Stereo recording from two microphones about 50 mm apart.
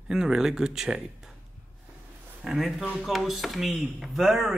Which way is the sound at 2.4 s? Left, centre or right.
Centre.